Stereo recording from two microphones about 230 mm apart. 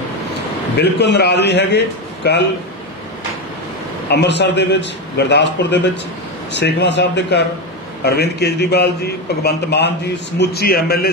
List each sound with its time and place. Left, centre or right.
0.7 s a man's voice: left
4.1 s a man's voice: left